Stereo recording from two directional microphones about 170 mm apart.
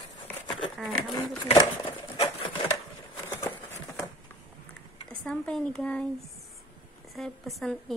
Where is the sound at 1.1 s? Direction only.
30° left (ahead or behind).